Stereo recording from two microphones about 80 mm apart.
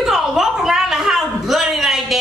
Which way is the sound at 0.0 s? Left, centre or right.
Centre.